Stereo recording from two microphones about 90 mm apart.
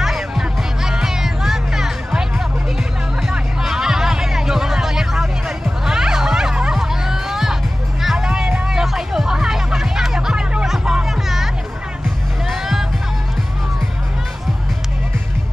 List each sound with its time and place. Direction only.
0.0 s music: 5° right (ahead or behind)